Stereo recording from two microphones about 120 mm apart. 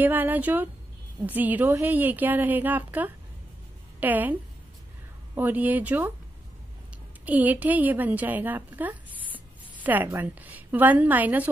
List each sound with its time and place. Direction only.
0.0 s a woman's voice: 15° right (ahead or behind)
7.2 s a woman's voice: 15° right (ahead or behind)